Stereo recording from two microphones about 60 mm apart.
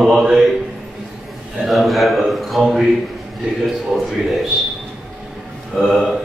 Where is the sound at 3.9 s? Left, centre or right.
Centre.